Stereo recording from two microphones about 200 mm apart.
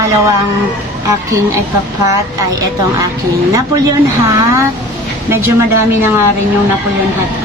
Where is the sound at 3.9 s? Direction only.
15° right (ahead or behind).